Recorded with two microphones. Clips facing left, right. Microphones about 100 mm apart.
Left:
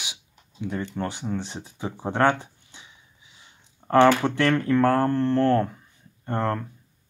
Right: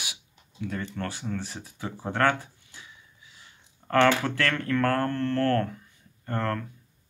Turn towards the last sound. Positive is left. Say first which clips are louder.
# left 3 dB
turn(degrees=25)  # may be behind; listen again after turning